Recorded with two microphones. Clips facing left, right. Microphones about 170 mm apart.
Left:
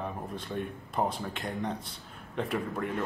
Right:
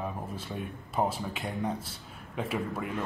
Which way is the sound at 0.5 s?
5° right (ahead or behind).